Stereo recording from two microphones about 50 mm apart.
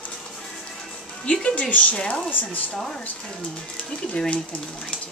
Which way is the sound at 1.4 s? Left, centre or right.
Left.